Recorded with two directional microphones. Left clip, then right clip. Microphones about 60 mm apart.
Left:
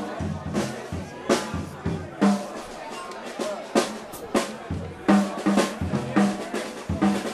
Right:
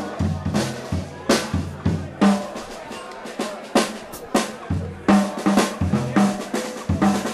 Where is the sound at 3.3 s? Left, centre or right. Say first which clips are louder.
Right 3 dB; right.